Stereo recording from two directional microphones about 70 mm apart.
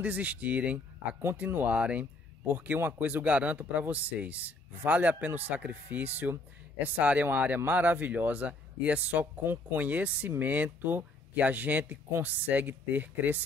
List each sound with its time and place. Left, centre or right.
0.0 s speech: right